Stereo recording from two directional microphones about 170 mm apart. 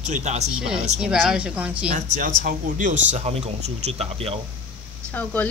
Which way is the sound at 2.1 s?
50° right (ahead or behind).